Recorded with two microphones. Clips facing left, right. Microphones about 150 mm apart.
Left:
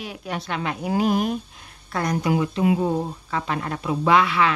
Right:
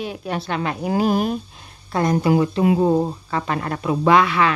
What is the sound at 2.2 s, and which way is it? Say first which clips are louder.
Speech: right 2 dB; 35° right (ahead or behind).